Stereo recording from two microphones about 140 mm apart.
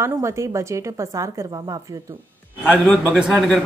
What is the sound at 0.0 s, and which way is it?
Speech, 20° right (ahead or behind).